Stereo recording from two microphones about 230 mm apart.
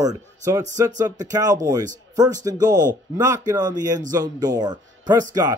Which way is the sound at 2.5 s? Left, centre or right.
Centre.